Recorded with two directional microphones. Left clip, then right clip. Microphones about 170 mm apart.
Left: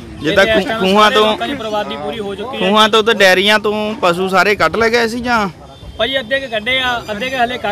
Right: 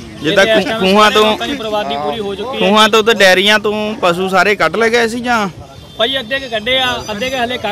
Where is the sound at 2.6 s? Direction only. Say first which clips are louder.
Right 1 dB; 5° right (ahead or behind).